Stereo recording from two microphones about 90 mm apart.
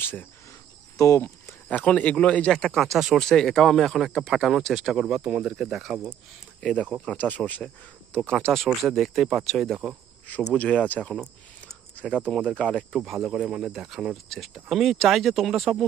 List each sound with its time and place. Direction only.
0.0 s cricket: 25° left (ahead or behind)
0.9 s speech: 35° left (ahead or behind)
1.7 s speech: 15° left (ahead or behind); by 5.0 s centre (ahead or behind)
5.0 s speech: 10° right (ahead or behind)
6.6 s speech: 10° left (ahead or behind)
8.6 s speech: centre (ahead or behind)
10.5 s speech: 10° left (ahead or behind)
12.9 s speech: 5° right (ahead or behind)